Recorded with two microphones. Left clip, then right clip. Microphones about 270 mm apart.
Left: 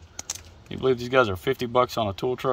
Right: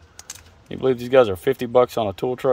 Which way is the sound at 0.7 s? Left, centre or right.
Right.